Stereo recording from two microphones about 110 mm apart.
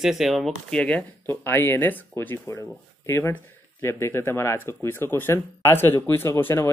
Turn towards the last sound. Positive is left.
turn(degrees=20)  # may be behind; listen again after turning